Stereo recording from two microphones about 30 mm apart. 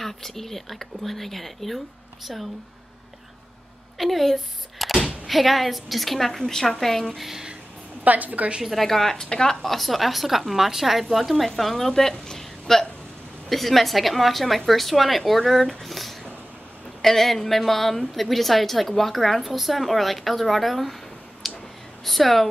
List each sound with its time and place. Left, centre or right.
0.0 s speech: centre
4.0 s a woman's voice: centre
8.0 s a woman's voice: right
8.7 s speech: centre
9.3 s a woman's voice: left
9.6 s a woman's voice: centre
11.1 s a woman's voice: centre
11.9 s a woman's voice: centre
21.4 s clicking: centre
22.0 s a woman's voice: centre